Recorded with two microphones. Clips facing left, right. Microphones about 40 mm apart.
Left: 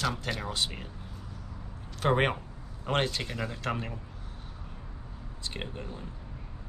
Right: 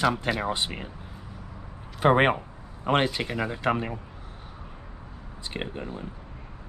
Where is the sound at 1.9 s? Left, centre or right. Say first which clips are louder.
Right 6 dB; right.